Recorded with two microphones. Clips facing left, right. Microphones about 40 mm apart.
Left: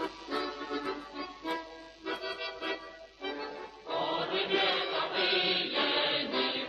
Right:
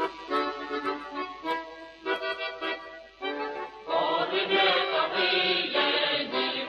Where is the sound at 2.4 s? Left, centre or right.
Centre.